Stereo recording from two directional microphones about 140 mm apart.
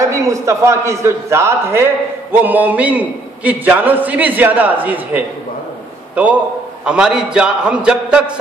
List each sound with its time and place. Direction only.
0.0 s a man's voice: 20° right (ahead or behind)
6.8 s a man's voice: 5° right (ahead or behind)